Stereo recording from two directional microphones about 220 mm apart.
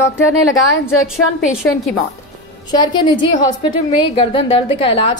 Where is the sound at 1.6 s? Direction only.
10° left (ahead or behind).